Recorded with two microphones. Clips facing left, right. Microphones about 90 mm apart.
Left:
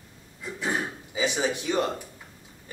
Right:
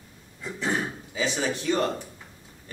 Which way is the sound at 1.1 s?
15° left (ahead or behind).